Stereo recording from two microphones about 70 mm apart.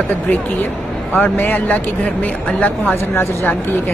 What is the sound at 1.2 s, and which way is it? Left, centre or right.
Speech, left.